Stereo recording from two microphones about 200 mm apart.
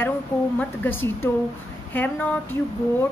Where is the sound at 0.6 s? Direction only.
10° left (ahead or behind).